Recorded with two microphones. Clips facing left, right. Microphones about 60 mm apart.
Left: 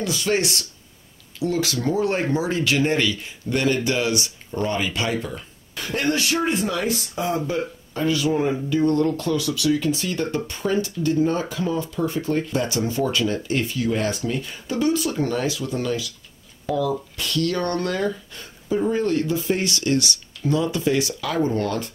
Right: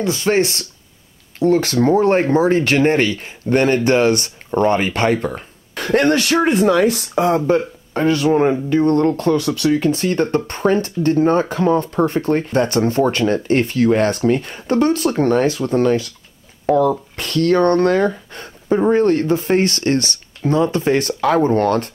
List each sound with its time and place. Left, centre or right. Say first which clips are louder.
0.0 s speech: right 6 dB; right